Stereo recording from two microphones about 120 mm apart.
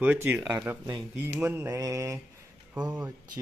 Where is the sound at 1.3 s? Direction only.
15° right (ahead or behind).